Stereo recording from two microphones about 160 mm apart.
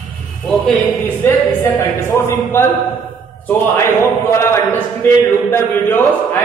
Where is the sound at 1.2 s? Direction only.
15° left (ahead or behind).